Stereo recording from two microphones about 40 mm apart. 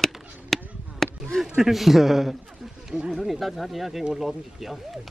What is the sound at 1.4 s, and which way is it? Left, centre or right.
A man's voice, centre.